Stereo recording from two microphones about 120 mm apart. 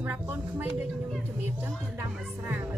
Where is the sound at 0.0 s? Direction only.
15° right (ahead or behind).